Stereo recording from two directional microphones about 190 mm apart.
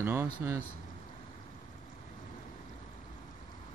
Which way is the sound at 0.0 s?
10° right (ahead or behind).